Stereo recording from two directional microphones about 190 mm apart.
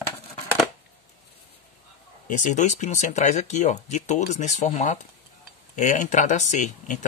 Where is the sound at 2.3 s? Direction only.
40° left (ahead or behind).